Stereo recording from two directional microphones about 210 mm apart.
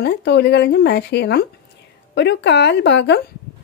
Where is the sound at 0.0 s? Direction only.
55° left (ahead or behind).